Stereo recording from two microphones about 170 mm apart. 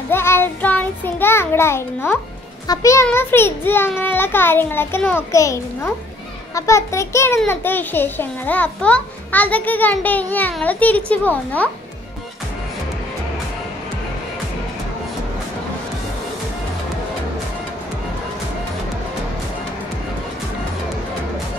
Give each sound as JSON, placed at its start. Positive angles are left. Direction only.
{"t": 0.1, "sound": "child singing", "side_deg": 15}
{"t": 2.7, "sound": "a child's voice", "side_deg": 20}